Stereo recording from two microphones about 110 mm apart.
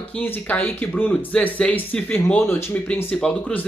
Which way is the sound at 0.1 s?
15° left (ahead or behind).